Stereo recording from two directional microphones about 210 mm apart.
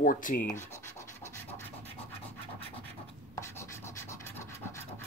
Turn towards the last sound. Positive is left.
turn(degrees=15)  # may be behind; listen again after turning